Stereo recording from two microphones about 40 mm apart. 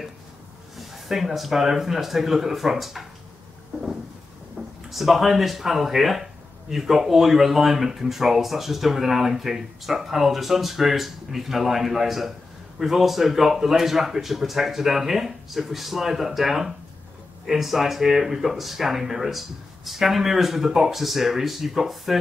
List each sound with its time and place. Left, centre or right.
0.7 s speech: centre
4.8 s speech: centre